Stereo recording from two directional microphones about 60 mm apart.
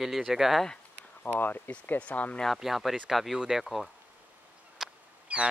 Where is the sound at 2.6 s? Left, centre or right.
Centre.